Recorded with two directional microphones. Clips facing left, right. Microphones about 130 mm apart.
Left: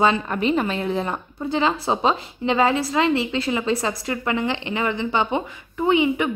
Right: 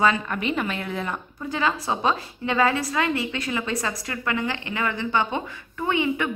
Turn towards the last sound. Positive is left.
turn(degrees=15)  # may be behind; listen again after turning